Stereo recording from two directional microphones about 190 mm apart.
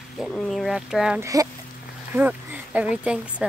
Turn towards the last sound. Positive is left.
turn(degrees=-5)  # may be behind; listen again after turning